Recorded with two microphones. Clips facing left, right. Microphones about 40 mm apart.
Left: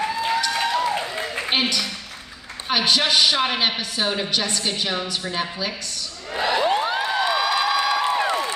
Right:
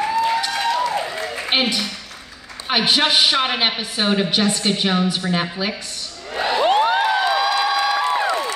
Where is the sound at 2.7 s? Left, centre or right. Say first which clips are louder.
Right 2 dB; right.